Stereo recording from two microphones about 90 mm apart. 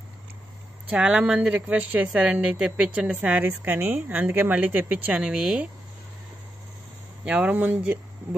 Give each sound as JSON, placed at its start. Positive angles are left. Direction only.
{"t": 0.8, "sound": "a woman's voice", "side_deg": -10}
{"t": 7.2, "sound": "a woman's voice", "side_deg": -15}